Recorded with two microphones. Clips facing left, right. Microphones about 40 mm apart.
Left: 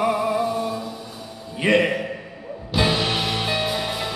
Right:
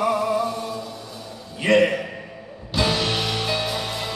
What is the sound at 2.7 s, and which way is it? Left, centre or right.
Music, centre.